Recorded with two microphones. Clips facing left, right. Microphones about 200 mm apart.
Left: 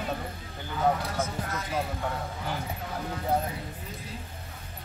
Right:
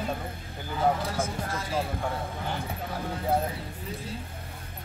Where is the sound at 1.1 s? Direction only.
30° right (ahead or behind).